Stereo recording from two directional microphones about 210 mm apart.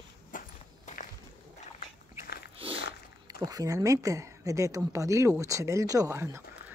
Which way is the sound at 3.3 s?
15° right (ahead or behind).